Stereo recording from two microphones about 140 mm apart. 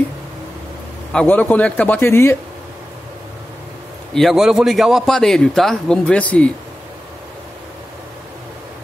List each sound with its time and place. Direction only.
1.1 s speech: 10° left (ahead or behind)
4.1 s a man's voice: centre (ahead or behind)